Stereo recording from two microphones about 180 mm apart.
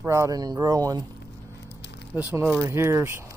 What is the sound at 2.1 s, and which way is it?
Speech, 10° right (ahead or behind).